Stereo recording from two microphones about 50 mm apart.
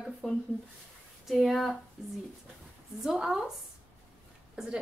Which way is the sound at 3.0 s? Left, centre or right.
Centre.